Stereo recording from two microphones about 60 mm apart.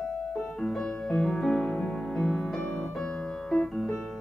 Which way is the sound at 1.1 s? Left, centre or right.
Centre.